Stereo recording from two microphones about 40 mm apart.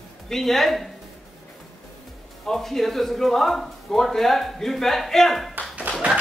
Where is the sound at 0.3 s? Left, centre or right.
Centre.